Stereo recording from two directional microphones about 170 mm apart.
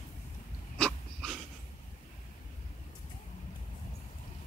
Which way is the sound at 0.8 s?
5° left (ahead or behind).